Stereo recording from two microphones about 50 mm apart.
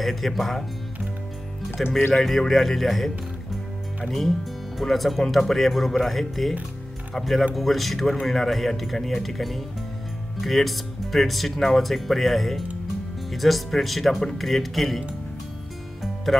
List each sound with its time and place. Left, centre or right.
0.0 s speech: centre
1.8 s speech: centre
4.1 s speech: centre
16.3 s speech: centre